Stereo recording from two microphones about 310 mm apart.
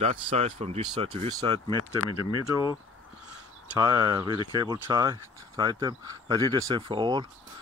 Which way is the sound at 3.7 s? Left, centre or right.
Centre.